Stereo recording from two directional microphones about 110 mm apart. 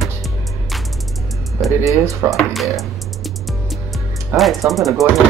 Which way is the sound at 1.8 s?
30° right (ahead or behind).